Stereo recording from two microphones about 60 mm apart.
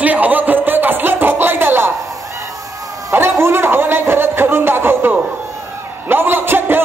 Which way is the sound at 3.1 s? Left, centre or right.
Right.